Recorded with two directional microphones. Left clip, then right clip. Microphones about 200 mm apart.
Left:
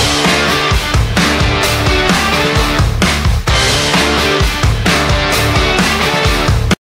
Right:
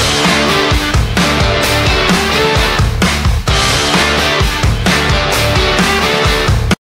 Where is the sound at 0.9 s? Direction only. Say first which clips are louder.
Even; centre (ahead or behind).